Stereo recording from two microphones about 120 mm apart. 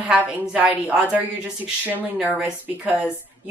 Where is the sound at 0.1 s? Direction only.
10° right (ahead or behind).